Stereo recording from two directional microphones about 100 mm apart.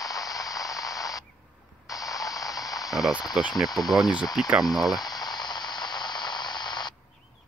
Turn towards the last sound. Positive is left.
turn(degrees=45)  # may be behind; listen again after turning